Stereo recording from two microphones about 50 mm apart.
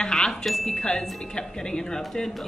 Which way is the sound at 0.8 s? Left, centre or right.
Centre.